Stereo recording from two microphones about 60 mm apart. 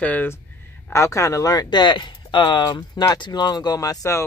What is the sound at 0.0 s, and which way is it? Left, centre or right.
Speech, left.